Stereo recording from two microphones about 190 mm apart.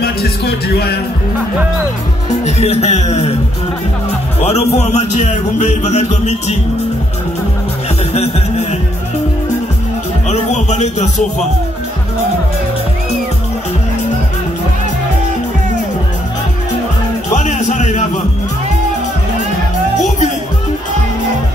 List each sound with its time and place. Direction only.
0.0 s a man's voice: 55° left (ahead or behind)
2.4 s speech: 35° left (ahead or behind)
4.4 s speech: 35° left (ahead or behind)
8.1 s music: 35° left (ahead or behind)
10.3 s music: 35° left (ahead or behind)
17.3 s music: 40° left (ahead or behind)